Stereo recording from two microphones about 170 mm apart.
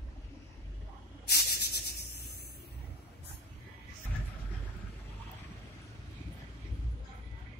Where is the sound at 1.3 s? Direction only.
70° left (ahead or behind).